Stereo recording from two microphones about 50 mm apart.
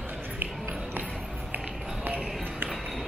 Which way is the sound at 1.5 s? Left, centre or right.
Right.